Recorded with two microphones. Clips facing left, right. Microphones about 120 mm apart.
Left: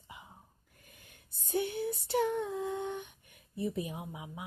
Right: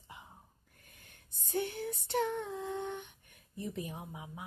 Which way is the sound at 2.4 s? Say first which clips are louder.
Left 3 dB; 40° left (ahead or behind).